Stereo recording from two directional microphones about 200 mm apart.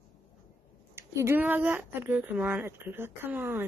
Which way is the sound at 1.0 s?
10° right (ahead or behind).